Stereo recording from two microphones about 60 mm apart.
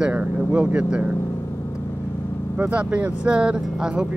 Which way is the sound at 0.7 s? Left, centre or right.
Centre.